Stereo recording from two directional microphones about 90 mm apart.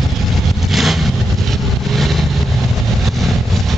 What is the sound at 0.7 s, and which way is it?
Vehicle, centre (ahead or behind).